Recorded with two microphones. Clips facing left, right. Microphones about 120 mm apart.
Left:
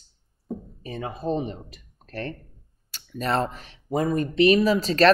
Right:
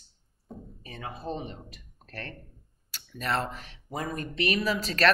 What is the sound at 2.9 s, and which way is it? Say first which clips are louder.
Speech: left 5 dB; 25° left (ahead or behind).